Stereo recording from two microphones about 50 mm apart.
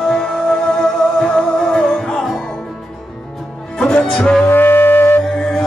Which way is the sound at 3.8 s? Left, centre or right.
Centre.